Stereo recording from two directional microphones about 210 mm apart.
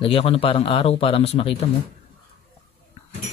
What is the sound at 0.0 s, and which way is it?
Speech, 25° left (ahead or behind).